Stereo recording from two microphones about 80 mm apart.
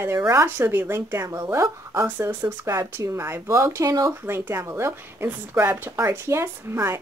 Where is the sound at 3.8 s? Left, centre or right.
Right.